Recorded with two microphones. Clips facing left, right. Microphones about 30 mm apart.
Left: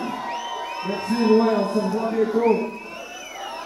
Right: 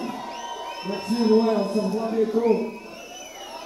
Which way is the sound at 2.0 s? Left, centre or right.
Left.